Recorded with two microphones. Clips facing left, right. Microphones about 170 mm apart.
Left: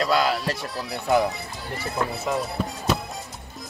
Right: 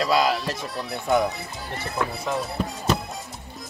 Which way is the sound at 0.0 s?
Centre (ahead or behind).